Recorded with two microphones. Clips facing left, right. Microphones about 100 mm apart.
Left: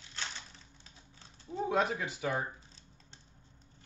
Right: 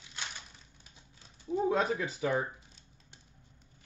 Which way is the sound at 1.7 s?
35° right (ahead or behind).